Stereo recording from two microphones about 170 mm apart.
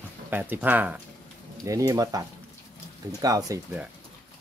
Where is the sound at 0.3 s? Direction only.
10° right (ahead or behind).